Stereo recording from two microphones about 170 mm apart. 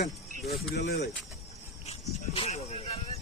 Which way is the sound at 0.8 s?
90° left.